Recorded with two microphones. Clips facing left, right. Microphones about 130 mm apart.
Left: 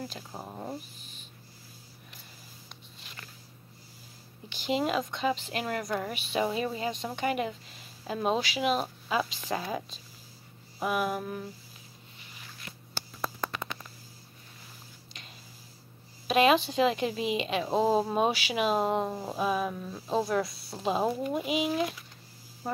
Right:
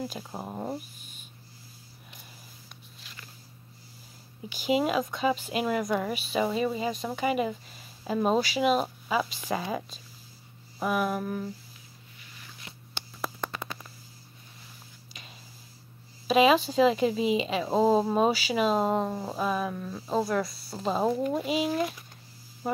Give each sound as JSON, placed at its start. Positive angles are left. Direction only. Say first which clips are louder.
{"t": 0.3, "sound": "speech", "louder": "right 4 dB", "side_deg": -20}
{"t": 4.5, "sound": "a woman's voice", "louder": "right 3 dB", "side_deg": -5}
{"t": 15.2, "sound": "a sound", "louder": "right 2 dB", "side_deg": -5}
{"t": 16.3, "sound": "a woman's voice", "louder": "right 2 dB", "side_deg": 0}